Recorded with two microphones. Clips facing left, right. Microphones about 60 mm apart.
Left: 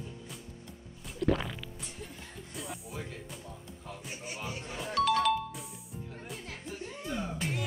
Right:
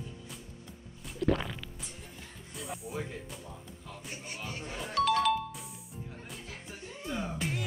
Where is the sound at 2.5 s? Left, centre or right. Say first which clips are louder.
Right 2 dB; centre.